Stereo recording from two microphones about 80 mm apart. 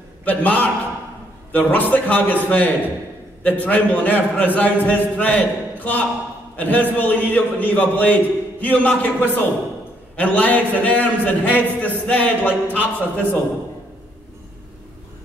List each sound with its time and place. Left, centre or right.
0.2 s a man's voice: centre